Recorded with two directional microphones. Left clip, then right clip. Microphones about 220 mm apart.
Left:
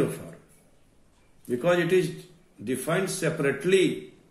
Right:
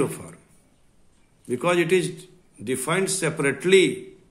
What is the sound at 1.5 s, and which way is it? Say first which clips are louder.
A man's voice: right 2 dB; 50° right (ahead or behind).